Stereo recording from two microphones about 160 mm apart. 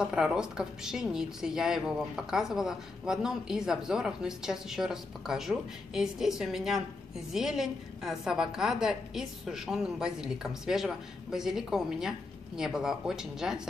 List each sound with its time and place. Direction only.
0.0 s a woman's voice: 5° right (ahead or behind)